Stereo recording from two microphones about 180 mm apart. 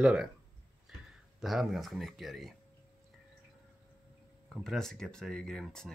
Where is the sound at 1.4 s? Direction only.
Centre (ahead or behind).